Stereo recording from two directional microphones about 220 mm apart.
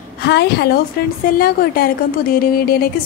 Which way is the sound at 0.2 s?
50° left (ahead or behind).